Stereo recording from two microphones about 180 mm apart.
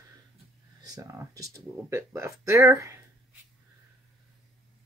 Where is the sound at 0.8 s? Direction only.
20° right (ahead or behind).